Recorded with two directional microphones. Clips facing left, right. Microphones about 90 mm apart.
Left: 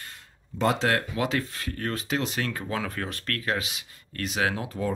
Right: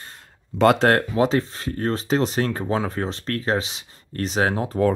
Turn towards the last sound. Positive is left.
turn(degrees=-35)  # may be behind; listen again after turning